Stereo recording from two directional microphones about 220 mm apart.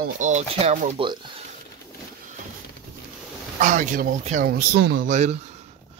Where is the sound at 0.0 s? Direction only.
35° right (ahead or behind).